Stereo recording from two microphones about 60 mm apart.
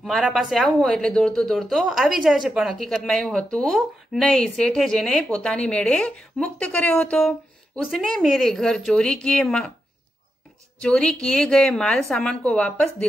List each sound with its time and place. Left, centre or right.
0.0 s speech: centre
1.5 s speech: centre
2.8 s speech: centre
5.3 s speech: centre
7.2 s speech: centre
10.8 s speech: centre
12.0 s speech: centre
12.3 s speech: left